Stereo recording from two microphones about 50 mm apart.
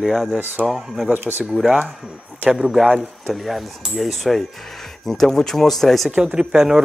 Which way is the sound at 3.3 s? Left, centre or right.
Centre.